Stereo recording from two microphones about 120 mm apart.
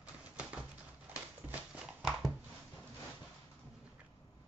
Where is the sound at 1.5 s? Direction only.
Centre (ahead or behind).